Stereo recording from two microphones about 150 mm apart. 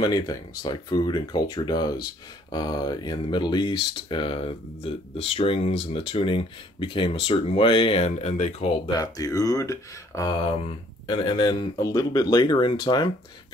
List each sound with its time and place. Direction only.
0.0 s speech: 25° left (ahead or behind); by 8.7 s 50° left (ahead or behind)
8.8 s speech: 25° left (ahead or behind)
10.3 s speech: 35° left (ahead or behind)